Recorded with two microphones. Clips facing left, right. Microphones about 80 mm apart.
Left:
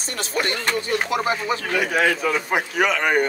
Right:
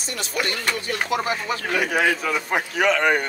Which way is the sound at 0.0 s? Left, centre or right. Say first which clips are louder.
Left 2 dB; left.